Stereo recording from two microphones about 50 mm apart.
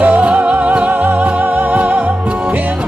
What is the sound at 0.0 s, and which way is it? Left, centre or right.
Music, right.